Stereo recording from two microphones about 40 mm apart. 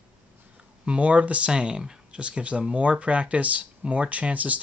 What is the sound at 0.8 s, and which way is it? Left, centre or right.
Speech, right.